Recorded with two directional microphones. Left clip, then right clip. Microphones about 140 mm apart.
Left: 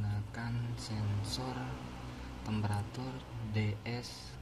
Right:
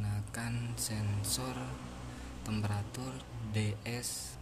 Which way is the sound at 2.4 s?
5° right (ahead or behind).